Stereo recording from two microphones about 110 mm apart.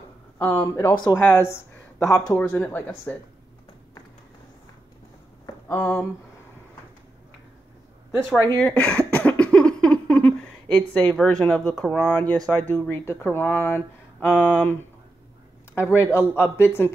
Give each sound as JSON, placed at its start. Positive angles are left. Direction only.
{"t": 0.4, "sound": "a woman's voice", "side_deg": 20}
{"t": 5.7, "sound": "speech", "side_deg": 15}
{"t": 8.4, "sound": "a sound", "side_deg": 15}
{"t": 11.4, "sound": "speech", "side_deg": 10}
{"t": 12.1, "sound": "speech", "side_deg": 15}